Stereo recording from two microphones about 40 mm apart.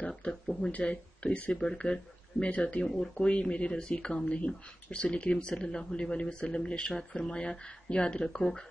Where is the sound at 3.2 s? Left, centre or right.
Left.